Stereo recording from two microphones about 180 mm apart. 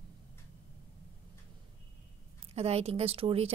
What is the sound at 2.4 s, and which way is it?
A woman's voice, 35° right (ahead or behind).